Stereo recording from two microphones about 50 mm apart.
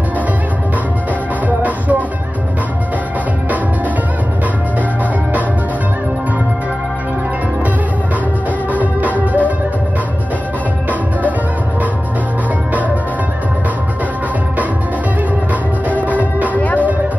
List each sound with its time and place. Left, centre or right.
1.6 s music: right
8.7 s music: right
15.9 s music: right
16.5 s music: left